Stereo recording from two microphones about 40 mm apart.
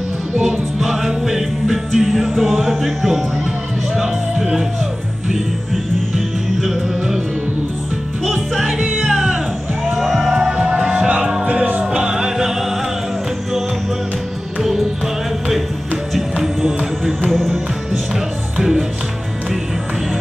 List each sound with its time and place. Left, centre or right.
0.7 s music: centre
6.6 s music: centre
8.3 s music: centre
10.5 s music: right
11.4 s music: right
11.8 s music: centre
14.6 s music: centre
16.2 s music: centre
18.6 s music: centre